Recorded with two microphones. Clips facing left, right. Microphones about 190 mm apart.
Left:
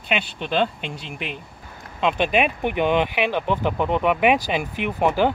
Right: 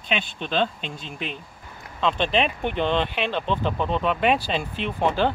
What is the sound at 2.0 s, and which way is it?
Speech, 15° left (ahead or behind).